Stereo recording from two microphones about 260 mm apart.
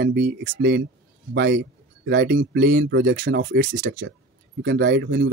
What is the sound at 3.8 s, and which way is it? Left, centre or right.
Speech, right.